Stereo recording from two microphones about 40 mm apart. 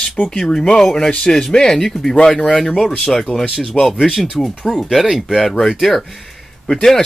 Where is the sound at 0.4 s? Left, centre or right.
Centre.